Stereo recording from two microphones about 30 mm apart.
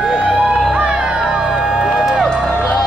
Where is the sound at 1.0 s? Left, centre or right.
Right.